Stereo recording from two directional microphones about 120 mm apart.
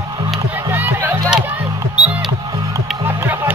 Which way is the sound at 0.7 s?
15° right (ahead or behind).